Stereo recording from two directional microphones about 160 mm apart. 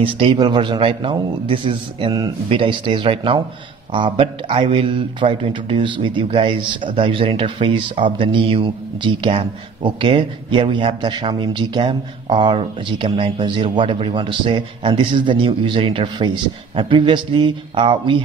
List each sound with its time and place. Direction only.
0.0 s a man's voice: 30° right (ahead or behind)